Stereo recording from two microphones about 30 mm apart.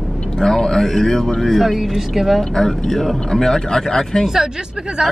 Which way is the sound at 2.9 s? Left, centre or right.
Centre.